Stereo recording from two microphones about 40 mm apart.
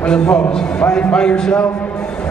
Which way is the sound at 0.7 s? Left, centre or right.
Left.